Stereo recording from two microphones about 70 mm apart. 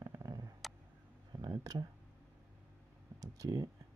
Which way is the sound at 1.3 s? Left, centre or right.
Right.